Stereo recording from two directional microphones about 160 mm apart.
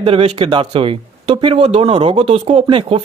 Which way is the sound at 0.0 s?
35° right (ahead or behind).